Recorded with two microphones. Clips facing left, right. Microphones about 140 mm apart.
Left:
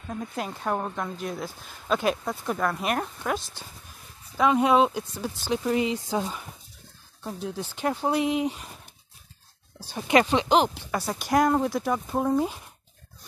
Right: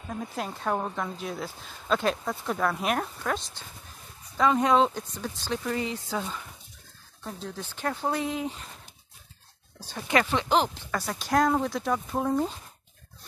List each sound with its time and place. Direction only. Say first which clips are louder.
0.1 s speech: left 1 dB; centre (ahead or behind); by 6.4 s 15° left (ahead or behind)
7.4 s speech: left 4 dB; 15° left (ahead or behind)
9.8 s speech: left 4 dB; 15° left (ahead or behind)